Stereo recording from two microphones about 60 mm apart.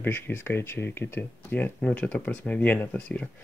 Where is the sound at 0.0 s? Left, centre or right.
Left.